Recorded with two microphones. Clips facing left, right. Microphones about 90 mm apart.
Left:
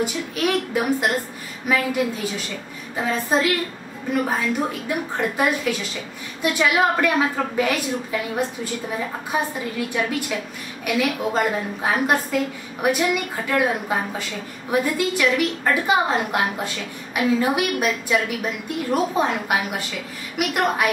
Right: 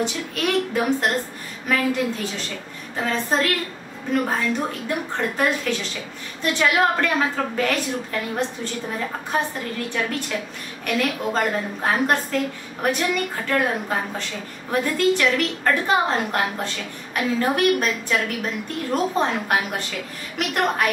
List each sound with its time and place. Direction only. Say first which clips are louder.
0.0 s a woman's voice: left 1 dB; 5° left (ahead or behind)
20.3 s a woman's voice: left 1 dB; 10° left (ahead or behind)